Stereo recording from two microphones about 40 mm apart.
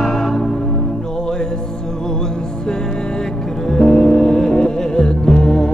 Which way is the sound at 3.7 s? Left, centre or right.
Centre.